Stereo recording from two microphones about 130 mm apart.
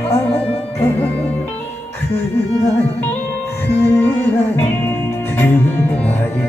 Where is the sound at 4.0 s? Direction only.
15° left (ahead or behind).